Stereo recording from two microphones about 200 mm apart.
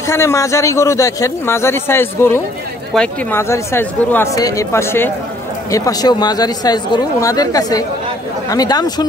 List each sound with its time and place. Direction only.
0.0 s speech: 15° left (ahead or behind)